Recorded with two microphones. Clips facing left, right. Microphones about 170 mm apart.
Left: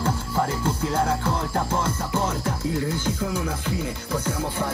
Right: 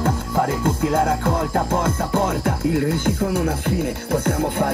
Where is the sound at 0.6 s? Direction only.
55° right (ahead or behind).